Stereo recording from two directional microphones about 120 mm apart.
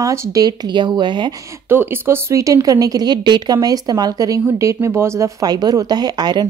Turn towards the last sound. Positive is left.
turn(degrees=-35)  # may be behind; listen again after turning